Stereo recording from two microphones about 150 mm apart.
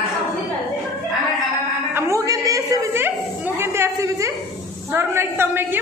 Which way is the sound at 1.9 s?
20° right (ahead or behind).